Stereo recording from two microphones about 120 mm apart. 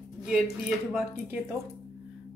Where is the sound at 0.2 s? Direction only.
5° right (ahead or behind).